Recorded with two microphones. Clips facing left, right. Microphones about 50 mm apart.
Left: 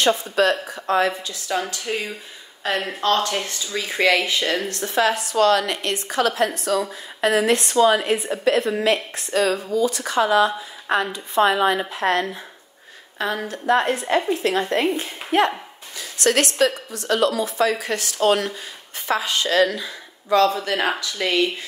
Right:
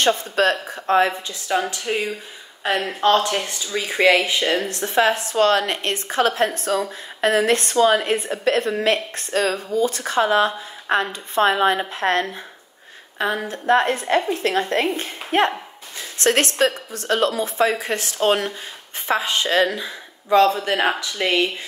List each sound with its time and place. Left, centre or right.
0.0 s speech: right
13.2 s speech: right
13.7 s a woman's voice: right